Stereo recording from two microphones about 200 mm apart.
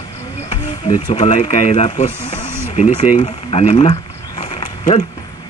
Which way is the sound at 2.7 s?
35° left (ahead or behind).